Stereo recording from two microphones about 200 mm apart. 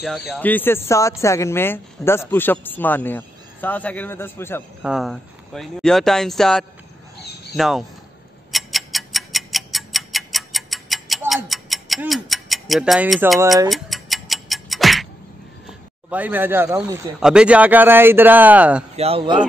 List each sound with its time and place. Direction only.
0.3 s speech: 10° left (ahead or behind)
4.8 s speech: centre (ahead or behind)
8.5 s tick-tock: centre (ahead or behind)
16.1 s speech: 10° right (ahead or behind)
18.9 s speech: 30° right (ahead or behind)